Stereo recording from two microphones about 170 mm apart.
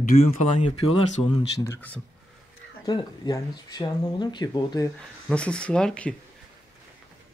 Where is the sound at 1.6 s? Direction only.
15° left (ahead or behind).